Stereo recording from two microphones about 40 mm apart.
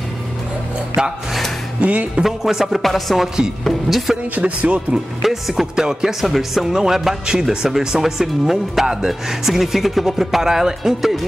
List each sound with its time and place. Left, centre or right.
1.0 s speech: centre
1.8 s speech: right
2.2 s speech: centre
4.4 s speech: right
4.9 s speech: centre
6.2 s speech: centre